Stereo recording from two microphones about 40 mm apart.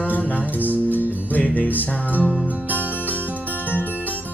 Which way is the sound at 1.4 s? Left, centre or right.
Left.